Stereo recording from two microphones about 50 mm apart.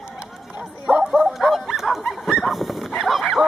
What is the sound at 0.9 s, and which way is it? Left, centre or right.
Bow-wow, centre.